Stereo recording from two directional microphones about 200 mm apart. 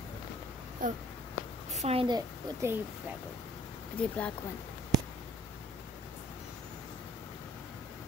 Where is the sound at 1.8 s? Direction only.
30° right (ahead or behind).